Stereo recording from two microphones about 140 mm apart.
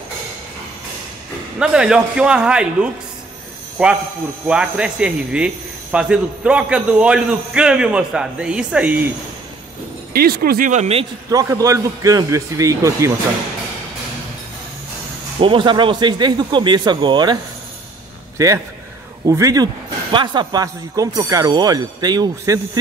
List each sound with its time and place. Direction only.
1.6 s speech: 5° right (ahead or behind)
10.1 s speech: 90° right; by 11.1 s 50° right (ahead or behind)
11.2 s a man's voice: 25° right (ahead or behind)
15.4 s speech: 35° right (ahead or behind)
18.4 s a man's voice: 25° right (ahead or behind)